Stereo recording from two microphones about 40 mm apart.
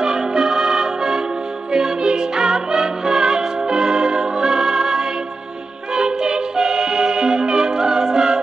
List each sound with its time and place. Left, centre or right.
0.0 s music: centre